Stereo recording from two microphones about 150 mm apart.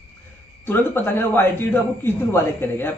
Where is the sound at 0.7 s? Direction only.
15° left (ahead or behind).